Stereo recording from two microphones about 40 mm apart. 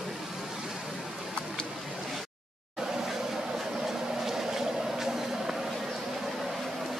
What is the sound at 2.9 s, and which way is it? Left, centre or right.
Vehicle, centre.